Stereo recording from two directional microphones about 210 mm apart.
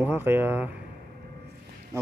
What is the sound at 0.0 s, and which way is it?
Speech, 10° right (ahead or behind).